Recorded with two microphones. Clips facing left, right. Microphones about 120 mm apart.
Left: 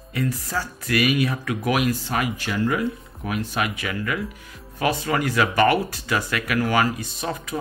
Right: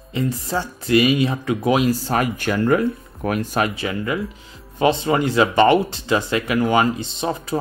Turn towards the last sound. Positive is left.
turn(degrees=-30)  # may be behind; listen again after turning